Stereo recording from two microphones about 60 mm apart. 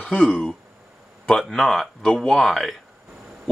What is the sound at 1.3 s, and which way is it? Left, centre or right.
Speech, centre.